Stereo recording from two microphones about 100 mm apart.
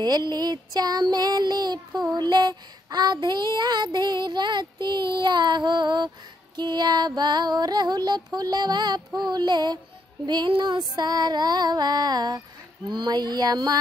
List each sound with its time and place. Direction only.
0.0 s child singing: 45° right (ahead or behind)